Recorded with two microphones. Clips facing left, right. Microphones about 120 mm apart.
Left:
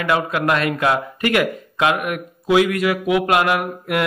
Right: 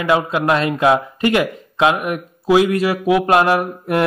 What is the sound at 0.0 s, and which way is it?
Speech, 25° right (ahead or behind).